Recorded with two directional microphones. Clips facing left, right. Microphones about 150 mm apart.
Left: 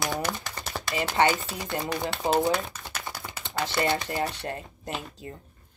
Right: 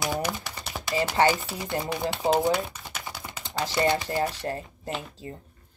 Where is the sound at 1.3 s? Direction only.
15° right (ahead or behind).